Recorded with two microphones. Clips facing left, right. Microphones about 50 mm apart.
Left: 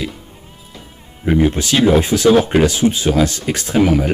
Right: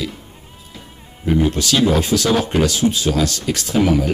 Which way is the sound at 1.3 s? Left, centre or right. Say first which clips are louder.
Left 2 dB; left.